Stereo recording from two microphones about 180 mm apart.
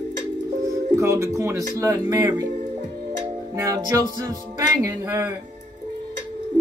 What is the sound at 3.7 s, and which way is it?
Music, 20° right (ahead or behind).